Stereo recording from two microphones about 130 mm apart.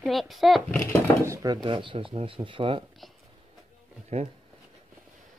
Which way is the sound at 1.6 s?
40° right (ahead or behind).